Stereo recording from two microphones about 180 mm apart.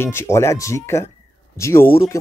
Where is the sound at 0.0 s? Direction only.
15° left (ahead or behind).